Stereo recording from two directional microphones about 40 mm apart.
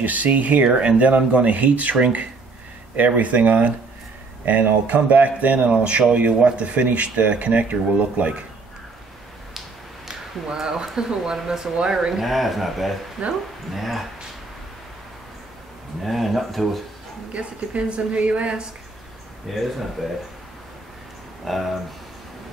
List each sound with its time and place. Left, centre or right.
0.0 s speech: right
5.7 s a woman's voice: right
10.0 s speech: centre
12.2 s speech: centre
16.0 s speech: centre
17.3 s a woman's voice: right
19.5 s speech: centre
21.5 s speech: centre